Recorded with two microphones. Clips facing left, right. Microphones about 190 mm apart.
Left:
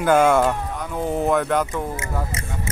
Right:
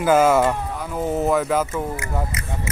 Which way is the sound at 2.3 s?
25° left (ahead or behind).